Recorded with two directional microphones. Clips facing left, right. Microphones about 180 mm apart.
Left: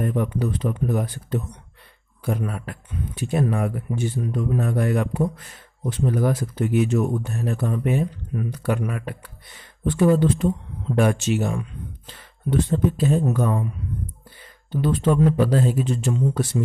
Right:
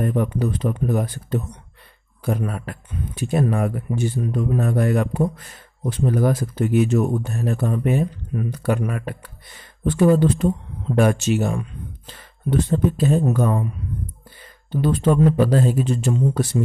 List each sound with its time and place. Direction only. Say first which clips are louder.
0.0 s a man's voice: right 2 dB; 45° right (ahead or behind)
14.7 s a man's voice: right 2 dB; 40° right (ahead or behind)